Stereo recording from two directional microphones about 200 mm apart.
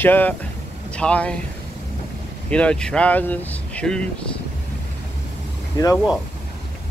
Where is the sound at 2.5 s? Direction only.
5° left (ahead or behind).